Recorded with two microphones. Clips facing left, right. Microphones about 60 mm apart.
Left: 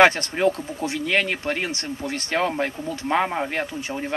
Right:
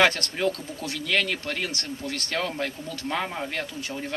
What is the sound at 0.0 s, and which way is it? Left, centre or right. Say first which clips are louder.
Speech: left 5 dB; left.